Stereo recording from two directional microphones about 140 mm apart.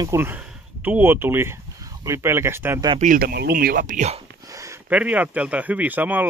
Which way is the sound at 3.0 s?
85° right.